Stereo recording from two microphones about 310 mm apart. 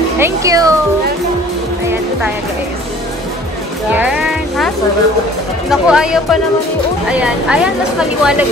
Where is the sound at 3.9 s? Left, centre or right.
Centre.